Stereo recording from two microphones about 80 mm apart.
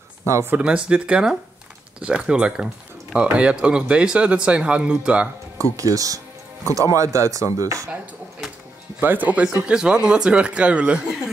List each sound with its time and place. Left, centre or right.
0.5 s speech: centre
5.6 s speech: right
9.0 s speech: right